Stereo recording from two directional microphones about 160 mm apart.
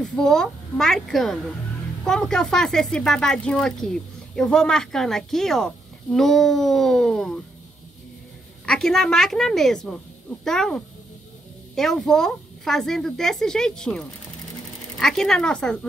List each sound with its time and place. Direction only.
0.0 s speech: 5° left (ahead or behind)
8.6 s speech: centre (ahead or behind)